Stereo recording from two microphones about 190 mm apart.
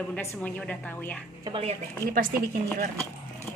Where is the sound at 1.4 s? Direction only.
30° right (ahead or behind).